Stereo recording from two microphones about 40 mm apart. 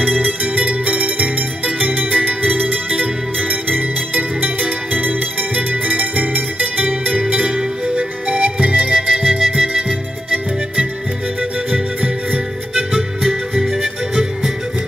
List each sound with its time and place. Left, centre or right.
0.0 s music: right
7.3 s music: right
11.7 s music: right
12.7 s music: centre